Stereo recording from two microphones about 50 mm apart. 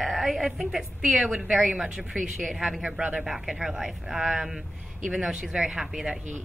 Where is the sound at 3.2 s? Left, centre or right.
Centre.